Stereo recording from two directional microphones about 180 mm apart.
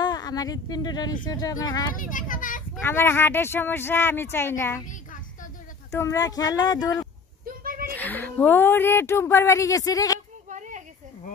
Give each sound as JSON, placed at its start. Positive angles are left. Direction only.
{"t": 0.0, "sound": "speech", "side_deg": 20}
{"t": 2.0, "sound": "a child's voice", "side_deg": 45}
{"t": 2.8, "sound": "speech", "side_deg": 15}
{"t": 4.8, "sound": "a sound", "side_deg": 45}
{"t": 5.9, "sound": "speech", "side_deg": 20}
{"t": 7.6, "sound": "a sound", "side_deg": -50}
{"t": 7.9, "sound": "speech", "side_deg": 10}